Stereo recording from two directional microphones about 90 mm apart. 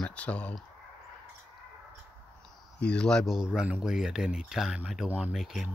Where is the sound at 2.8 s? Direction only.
10° left (ahead or behind).